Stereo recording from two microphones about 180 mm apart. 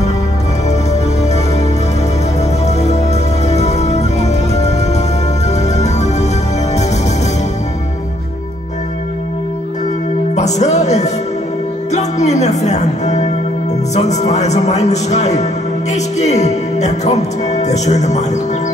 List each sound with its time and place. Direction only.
3.4 s music: 35° left (ahead or behind)
10.3 s music: 40° left (ahead or behind)
13.9 s speech: 40° left (ahead or behind)